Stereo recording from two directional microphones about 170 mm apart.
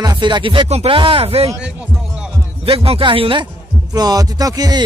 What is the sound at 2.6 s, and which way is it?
A man's voice, 35° right (ahead or behind).